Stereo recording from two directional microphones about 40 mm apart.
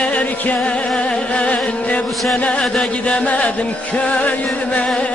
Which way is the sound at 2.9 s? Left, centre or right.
Left.